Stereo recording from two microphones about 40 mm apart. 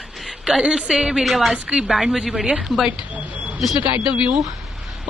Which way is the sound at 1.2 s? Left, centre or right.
Centre.